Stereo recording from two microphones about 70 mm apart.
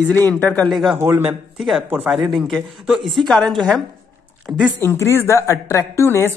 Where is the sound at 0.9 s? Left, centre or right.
Right.